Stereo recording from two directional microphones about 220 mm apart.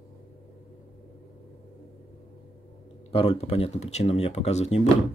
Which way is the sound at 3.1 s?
25° left (ahead or behind).